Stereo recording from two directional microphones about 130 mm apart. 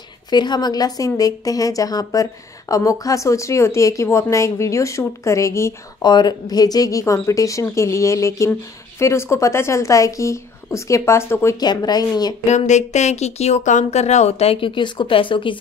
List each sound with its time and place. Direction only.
0.3 s speech: 35° left (ahead or behind)
6.0 s speech: 35° left (ahead or behind)
11.6 s speech: 30° left (ahead or behind)
12.4 s speech: 65° left (ahead or behind); by 15.5 s 40° left (ahead or behind)